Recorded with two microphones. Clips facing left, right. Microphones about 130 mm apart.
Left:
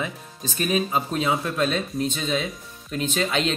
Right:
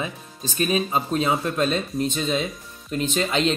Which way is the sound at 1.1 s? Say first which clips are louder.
Right 3 dB; 35° right (ahead or behind).